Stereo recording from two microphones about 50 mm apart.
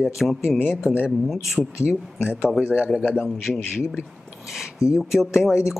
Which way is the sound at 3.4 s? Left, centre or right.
Centre.